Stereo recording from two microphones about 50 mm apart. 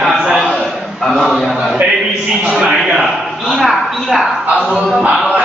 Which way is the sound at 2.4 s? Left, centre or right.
Right.